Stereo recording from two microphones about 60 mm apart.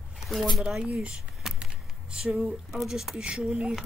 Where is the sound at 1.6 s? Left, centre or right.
Centre.